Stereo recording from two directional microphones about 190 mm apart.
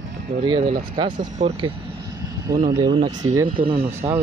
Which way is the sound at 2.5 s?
20° right (ahead or behind).